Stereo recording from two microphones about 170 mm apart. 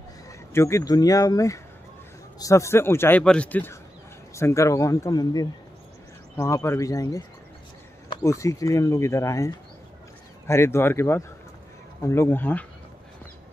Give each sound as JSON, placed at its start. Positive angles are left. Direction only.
{"t": 0.5, "sound": "a man's voice", "side_deg": 15}